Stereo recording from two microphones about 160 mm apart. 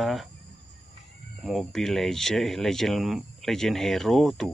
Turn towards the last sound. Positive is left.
turn(degrees=0)  # may be behind; listen again after turning